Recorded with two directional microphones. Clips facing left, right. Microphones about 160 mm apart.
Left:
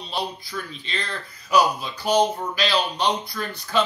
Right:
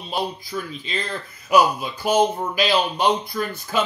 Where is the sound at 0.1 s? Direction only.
45° right (ahead or behind).